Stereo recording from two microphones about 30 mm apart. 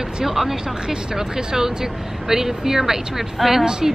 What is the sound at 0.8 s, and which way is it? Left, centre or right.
Speech, centre.